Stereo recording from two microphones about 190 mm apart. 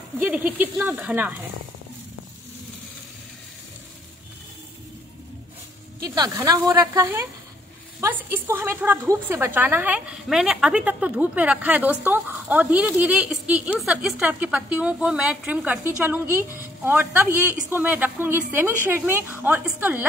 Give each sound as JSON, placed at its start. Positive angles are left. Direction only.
{"t": 0.2, "sound": "a woman's voice", "side_deg": -10}
{"t": 6.0, "sound": "a woman's voice", "side_deg": -20}